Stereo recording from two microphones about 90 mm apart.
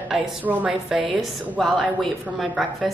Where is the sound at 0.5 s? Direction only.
15° right (ahead or behind).